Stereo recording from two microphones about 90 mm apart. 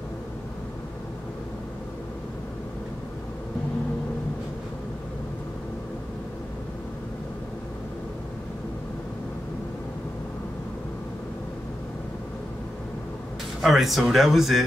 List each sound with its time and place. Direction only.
13.6 s speech: centre (ahead or behind)